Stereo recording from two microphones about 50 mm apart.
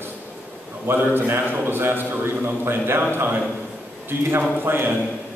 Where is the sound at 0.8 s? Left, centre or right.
Right.